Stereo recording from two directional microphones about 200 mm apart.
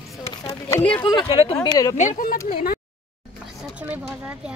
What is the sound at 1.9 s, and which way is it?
Speech, 35° left (ahead or behind).